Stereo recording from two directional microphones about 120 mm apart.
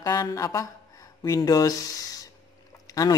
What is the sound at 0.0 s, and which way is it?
A woman's voice, 30° left (ahead or behind).